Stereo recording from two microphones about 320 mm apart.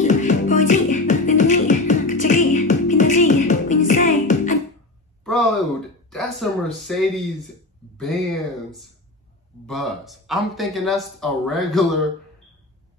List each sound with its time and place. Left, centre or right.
0.0 s music: left
5.2 s a sound: centre
6.9 s speech: centre